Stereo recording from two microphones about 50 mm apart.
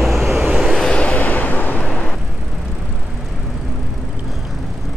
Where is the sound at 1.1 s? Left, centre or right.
Left.